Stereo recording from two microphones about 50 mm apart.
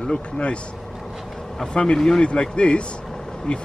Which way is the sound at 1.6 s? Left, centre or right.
Centre.